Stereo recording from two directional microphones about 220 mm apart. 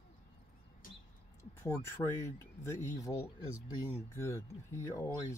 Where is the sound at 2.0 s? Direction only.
10° left (ahead or behind).